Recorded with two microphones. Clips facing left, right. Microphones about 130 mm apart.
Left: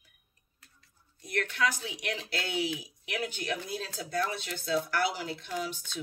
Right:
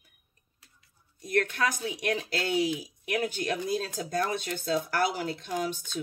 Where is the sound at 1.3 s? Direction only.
45° right (ahead or behind).